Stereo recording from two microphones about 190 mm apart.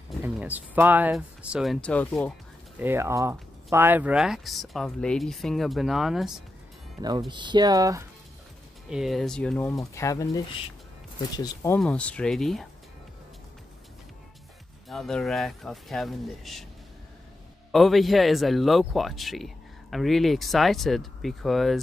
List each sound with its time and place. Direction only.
0.2 s speech: 10° right (ahead or behind); by 2.3 s 10° left (ahead or behind)
2.8 s speech: 10° right (ahead or behind)
7.0 s speech: 20° right (ahead or behind)
8.8 s speech: centre (ahead or behind)
14.9 s speech: centre (ahead or behind)
17.6 s speech: centre (ahead or behind)